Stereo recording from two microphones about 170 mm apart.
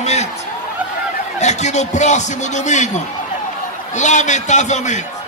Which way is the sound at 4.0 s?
45° left (ahead or behind).